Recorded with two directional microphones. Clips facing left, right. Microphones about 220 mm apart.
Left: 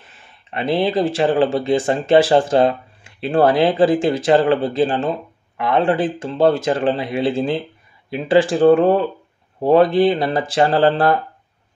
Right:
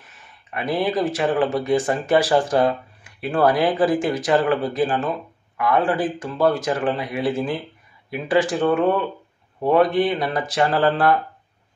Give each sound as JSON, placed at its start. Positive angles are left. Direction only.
{"t": 0.0, "sound": "speech", "side_deg": 30}